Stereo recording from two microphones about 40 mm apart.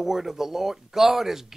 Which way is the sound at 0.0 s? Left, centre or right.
Centre.